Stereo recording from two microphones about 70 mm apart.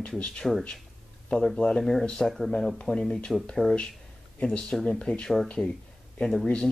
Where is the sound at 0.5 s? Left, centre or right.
Centre.